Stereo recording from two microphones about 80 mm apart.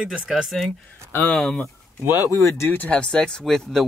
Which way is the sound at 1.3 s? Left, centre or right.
Centre.